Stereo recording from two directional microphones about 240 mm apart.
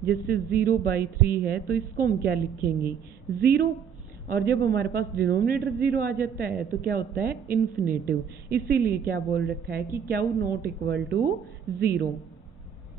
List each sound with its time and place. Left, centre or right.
0.0 s a man's voice: right